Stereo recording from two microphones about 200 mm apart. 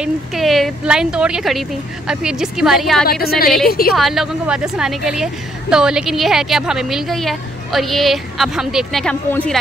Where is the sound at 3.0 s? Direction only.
50° left (ahead or behind).